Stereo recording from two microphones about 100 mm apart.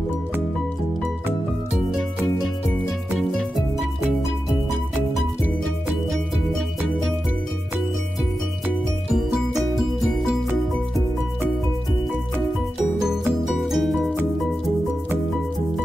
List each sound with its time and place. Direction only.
3.2 s music: centre (ahead or behind)
9.1 s music: centre (ahead or behind)
13.5 s music: centre (ahead or behind)